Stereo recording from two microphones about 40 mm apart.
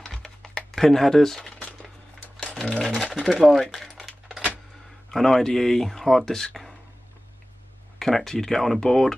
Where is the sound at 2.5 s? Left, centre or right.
Centre.